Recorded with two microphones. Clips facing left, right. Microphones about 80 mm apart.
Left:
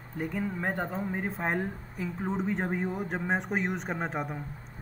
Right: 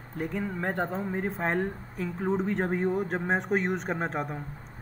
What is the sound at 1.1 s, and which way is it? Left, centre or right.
Speech, centre.